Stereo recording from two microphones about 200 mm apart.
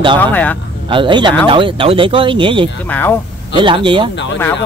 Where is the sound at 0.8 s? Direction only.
25° right (ahead or behind).